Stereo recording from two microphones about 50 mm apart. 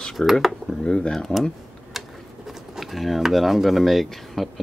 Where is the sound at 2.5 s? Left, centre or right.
Centre.